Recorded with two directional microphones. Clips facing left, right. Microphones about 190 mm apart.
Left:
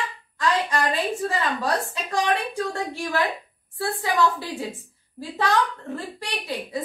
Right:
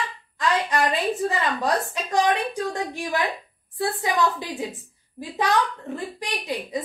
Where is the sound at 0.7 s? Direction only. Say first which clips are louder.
Right 1 dB; 20° right (ahead or behind).